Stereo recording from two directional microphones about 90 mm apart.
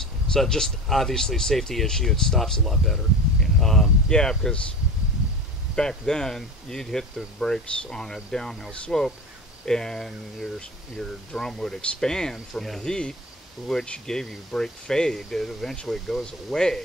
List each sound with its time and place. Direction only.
0.3 s speech: 5° left (ahead or behind)
5.8 s speech: 5° left (ahead or behind)